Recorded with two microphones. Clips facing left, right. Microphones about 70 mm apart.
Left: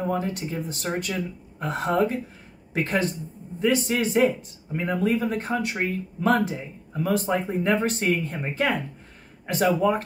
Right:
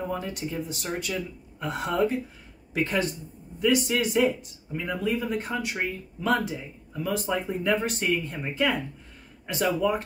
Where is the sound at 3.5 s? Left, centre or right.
Left.